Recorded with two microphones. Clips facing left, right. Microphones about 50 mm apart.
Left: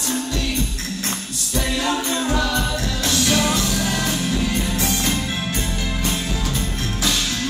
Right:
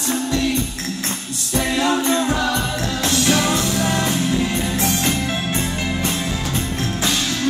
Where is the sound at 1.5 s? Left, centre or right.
Right.